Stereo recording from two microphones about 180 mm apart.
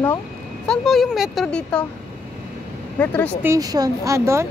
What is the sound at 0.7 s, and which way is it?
Speech, centre (ahead or behind).